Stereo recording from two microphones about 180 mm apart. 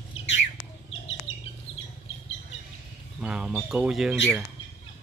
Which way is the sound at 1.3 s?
90° left.